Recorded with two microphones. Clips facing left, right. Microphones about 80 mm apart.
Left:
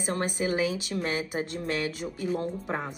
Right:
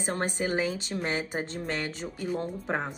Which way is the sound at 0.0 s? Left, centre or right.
Right.